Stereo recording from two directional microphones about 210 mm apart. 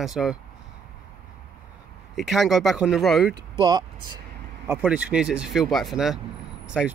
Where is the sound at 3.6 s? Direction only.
20° right (ahead or behind).